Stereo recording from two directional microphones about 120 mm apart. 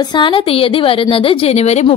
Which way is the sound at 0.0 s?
40° left (ahead or behind).